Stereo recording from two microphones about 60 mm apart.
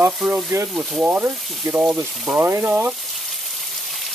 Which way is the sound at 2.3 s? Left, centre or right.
Right.